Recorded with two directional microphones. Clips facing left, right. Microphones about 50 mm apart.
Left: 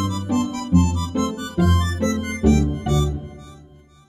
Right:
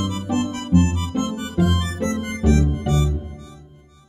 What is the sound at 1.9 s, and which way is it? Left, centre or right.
Music, right.